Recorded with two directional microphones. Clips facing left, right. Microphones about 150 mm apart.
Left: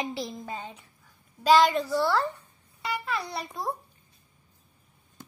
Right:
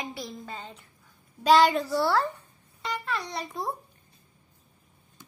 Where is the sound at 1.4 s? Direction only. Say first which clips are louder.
Even; centre (ahead or behind).